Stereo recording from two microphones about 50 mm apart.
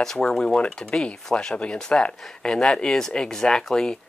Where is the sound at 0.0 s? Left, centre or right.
Centre.